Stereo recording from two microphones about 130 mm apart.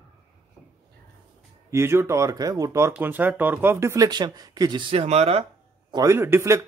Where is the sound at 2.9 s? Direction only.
15° right (ahead or behind); by 4.8 s 30° right (ahead or behind).